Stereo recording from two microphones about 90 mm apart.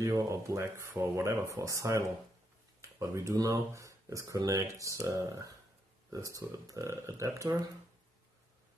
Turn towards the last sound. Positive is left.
turn(degrees=-35)  # may be behind; listen again after turning